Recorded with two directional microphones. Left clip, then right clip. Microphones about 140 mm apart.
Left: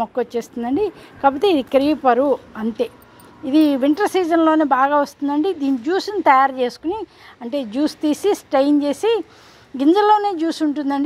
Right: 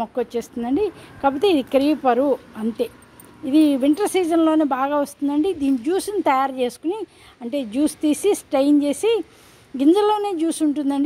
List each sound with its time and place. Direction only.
0.0 s speech: 10° right (ahead or behind)